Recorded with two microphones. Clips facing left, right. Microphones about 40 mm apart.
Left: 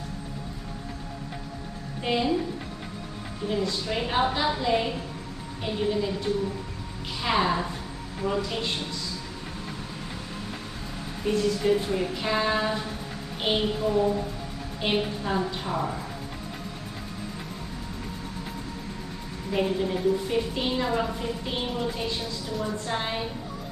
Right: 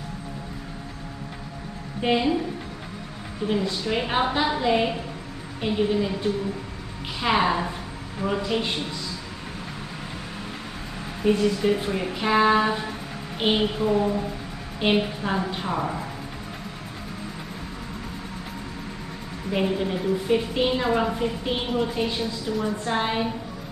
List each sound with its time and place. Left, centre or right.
2.0 s speech: right
3.4 s speech: centre
11.2 s a woman's voice: right
19.5 s speech: right